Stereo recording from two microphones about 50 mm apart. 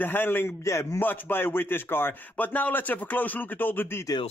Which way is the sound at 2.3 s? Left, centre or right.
Left.